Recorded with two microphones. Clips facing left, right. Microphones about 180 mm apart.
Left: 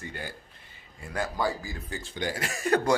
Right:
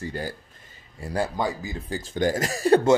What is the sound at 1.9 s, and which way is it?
Speech, 45° right (ahead or behind).